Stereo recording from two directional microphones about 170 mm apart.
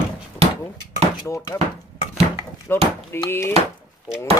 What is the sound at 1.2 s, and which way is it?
Speech, 15° left (ahead or behind).